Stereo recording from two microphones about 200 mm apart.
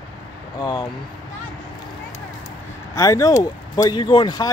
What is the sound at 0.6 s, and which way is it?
Speech, 20° left (ahead or behind).